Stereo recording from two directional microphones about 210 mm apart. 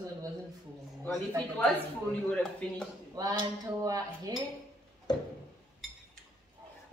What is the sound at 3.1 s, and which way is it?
Speech, 20° right (ahead or behind).